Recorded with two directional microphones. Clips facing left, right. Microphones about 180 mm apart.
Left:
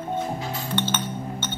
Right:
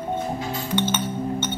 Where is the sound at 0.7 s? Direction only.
10° right (ahead or behind).